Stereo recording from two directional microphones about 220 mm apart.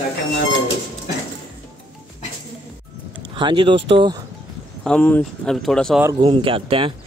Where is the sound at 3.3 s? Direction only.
20° right (ahead or behind).